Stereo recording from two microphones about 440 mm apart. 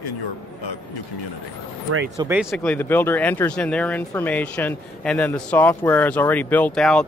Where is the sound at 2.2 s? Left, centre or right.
Centre.